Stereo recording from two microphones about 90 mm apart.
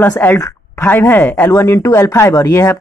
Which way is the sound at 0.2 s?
20° left (ahead or behind).